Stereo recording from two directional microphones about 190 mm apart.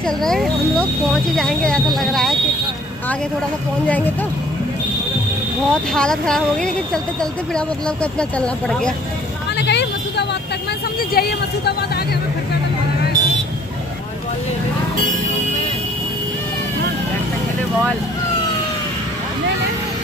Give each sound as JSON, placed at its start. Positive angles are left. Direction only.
{"t": 0.0, "sound": "speech", "side_deg": 0}
{"t": 2.0, "sound": "a sound", "side_deg": 0}
{"t": 3.8, "sound": "speech", "side_deg": 10}
{"t": 5.7, "sound": "speech", "side_deg": 5}
{"t": 9.6, "sound": "vehicle", "side_deg": 65}
{"t": 11.1, "sound": "speech", "side_deg": 55}